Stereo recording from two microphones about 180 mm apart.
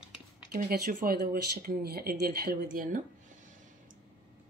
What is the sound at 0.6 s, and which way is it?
Speech, 55° right (ahead or behind).